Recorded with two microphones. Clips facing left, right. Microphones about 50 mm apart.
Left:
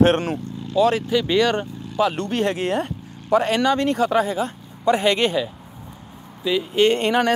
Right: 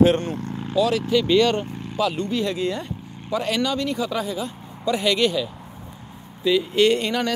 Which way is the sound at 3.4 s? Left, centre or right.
Left.